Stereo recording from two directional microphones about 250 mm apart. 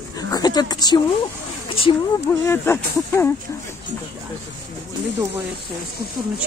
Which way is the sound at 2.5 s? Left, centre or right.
Centre.